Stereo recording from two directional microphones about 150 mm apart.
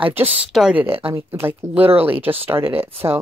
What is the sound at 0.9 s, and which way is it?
Speech, 40° right (ahead or behind).